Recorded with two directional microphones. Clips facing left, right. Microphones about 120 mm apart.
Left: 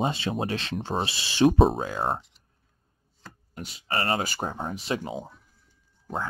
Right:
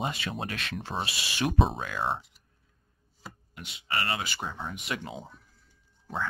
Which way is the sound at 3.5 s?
40° left (ahead or behind).